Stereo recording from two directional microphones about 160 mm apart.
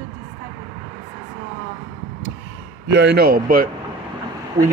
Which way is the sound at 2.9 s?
90° right.